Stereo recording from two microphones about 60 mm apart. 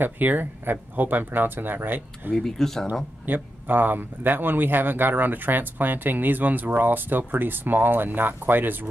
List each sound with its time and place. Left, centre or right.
0.0 s speech: right
2.3 s speech: centre
3.3 s speech: right